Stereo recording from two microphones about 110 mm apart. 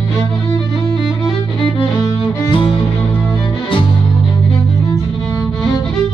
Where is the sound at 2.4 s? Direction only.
50° left (ahead or behind).